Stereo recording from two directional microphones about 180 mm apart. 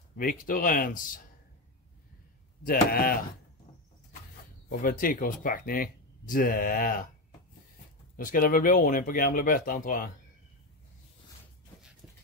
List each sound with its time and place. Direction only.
0.2 s speech: 50° left (ahead or behind)
2.6 s speech: 55° left (ahead or behind)
4.6 s speech: 50° left (ahead or behind)
8.2 s speech: 50° left (ahead or behind)